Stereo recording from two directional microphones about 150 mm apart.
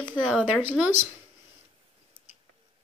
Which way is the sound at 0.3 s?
5° right (ahead or behind).